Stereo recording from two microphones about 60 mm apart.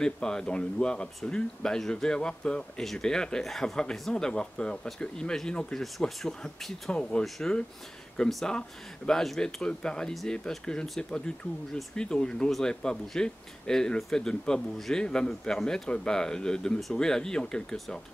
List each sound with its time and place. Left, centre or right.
0.0 s speech: centre
8.5 s speech: centre